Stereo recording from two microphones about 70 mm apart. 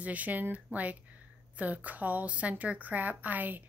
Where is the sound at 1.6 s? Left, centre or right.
Right.